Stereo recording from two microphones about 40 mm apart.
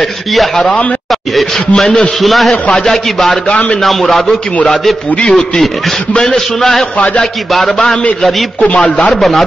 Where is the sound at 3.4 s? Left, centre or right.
Left.